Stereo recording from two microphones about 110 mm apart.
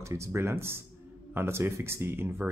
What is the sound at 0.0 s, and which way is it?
Speech, 25° right (ahead or behind).